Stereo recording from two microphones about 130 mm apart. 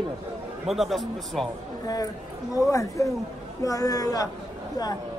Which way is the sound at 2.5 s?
25° left (ahead or behind).